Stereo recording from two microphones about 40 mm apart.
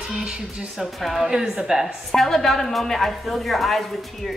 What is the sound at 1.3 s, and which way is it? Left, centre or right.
Speech, centre.